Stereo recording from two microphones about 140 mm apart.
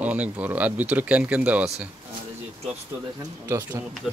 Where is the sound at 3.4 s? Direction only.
20° right (ahead or behind).